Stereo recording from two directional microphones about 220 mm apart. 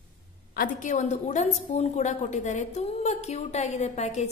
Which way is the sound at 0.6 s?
35° left (ahead or behind).